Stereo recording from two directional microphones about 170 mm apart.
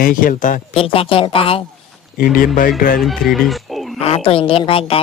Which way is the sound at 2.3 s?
55° left (ahead or behind).